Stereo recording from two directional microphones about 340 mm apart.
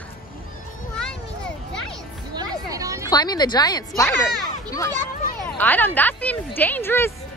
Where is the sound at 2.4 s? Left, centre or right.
Centre.